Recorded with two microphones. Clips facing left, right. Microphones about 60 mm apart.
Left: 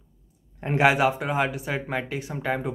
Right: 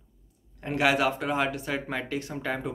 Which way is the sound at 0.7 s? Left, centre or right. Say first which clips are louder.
Left 4 dB; left.